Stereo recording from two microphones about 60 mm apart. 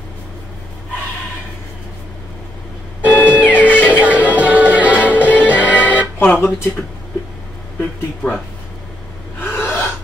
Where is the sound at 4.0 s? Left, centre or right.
Right.